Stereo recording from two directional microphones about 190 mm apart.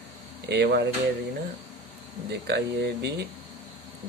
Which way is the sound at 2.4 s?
60° right (ahead or behind).